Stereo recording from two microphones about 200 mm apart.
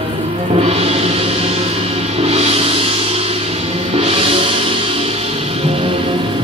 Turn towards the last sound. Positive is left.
turn(degrees=-30)  # may be behind; listen again after turning